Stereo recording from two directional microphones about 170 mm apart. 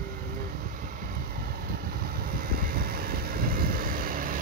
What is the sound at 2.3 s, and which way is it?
Vehicle, 60° right (ahead or behind).